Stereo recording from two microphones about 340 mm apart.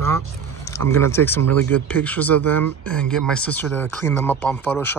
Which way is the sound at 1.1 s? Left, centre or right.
Centre.